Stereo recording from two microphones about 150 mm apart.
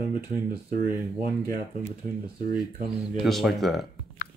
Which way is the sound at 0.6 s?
85° right.